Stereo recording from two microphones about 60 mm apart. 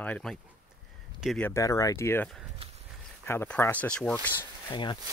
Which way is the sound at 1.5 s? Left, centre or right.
Left.